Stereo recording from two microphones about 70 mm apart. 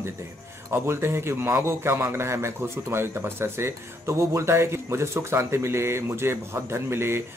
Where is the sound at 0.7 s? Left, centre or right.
Right.